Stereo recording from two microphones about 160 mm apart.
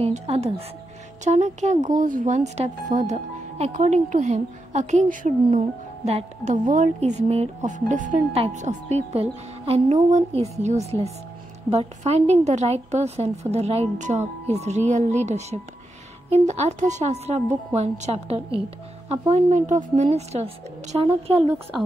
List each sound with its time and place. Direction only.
0.0 s speech: 40° right (ahead or behind)